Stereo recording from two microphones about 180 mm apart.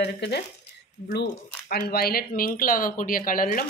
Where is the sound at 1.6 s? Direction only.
55° left (ahead or behind).